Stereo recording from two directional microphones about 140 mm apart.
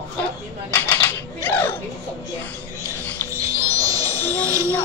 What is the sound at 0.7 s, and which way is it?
Dishes, 15° left (ahead or behind).